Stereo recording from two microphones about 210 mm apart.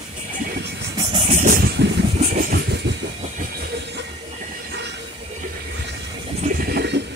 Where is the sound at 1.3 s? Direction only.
40° right (ahead or behind).